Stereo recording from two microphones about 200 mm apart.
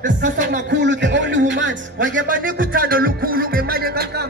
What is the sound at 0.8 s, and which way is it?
A man's voice, 60° right (ahead or behind).